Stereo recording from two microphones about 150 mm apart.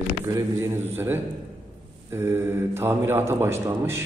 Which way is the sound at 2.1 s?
15° right (ahead or behind).